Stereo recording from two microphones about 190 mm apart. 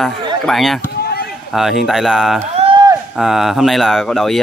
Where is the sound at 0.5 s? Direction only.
Centre (ahead or behind).